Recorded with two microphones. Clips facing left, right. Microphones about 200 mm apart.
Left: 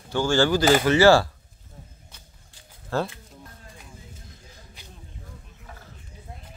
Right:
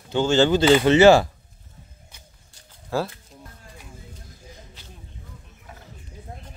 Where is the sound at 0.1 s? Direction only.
20° right (ahead or behind).